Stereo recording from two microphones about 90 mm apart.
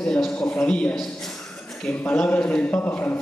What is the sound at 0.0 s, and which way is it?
A man's voice, 10° left (ahead or behind).